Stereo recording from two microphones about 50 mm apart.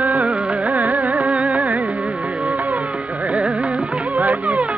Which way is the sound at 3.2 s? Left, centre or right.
Right.